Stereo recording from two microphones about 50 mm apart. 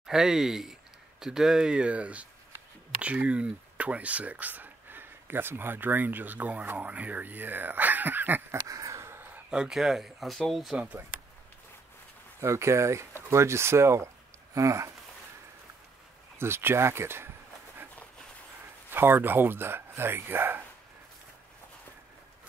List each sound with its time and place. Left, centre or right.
0.0 s speech: centre
1.7 s speech: right
8.6 s a sound: right
9.1 s a sound: right
9.5 s speech: centre
12.4 s speech: right
16.3 s speech: right
18.9 s speech: right